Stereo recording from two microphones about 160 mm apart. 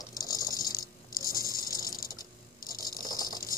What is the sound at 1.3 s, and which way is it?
Water, 20° right (ahead or behind).